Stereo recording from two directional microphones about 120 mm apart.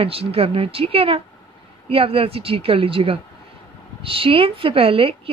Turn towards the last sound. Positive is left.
turn(degrees=-50)  # may be behind; listen again after turning